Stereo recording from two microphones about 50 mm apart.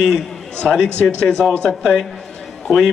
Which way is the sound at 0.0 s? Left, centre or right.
Centre.